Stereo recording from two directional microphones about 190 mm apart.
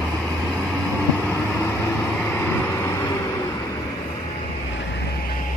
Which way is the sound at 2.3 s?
15° left (ahead or behind).